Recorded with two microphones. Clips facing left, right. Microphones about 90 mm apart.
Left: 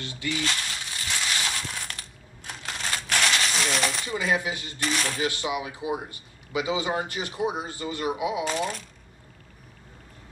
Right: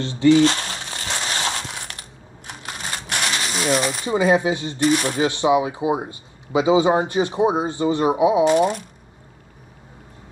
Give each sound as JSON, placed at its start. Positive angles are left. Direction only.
{"t": 0.0, "sound": "speech", "side_deg": -30}
{"t": 0.6, "sound": "crushing", "side_deg": -40}
{"t": 2.8, "sound": "a sound", "side_deg": -25}
{"t": 4.0, "sound": "speech", "side_deg": -25}